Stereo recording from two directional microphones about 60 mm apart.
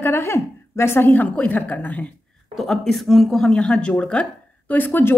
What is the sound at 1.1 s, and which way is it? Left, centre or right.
Speech, left.